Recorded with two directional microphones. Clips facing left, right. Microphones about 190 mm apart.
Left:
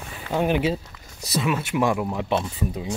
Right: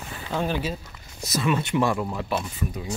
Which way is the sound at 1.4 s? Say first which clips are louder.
Even; 5° left (ahead or behind).